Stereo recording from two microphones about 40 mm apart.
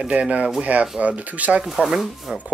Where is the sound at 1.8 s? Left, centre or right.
Centre.